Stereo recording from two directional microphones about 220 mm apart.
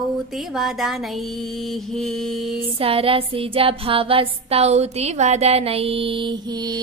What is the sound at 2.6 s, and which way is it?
Music, 25° right (ahead or behind).